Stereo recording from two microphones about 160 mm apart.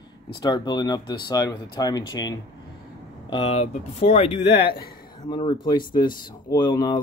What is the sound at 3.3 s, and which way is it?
Speech, 35° left (ahead or behind).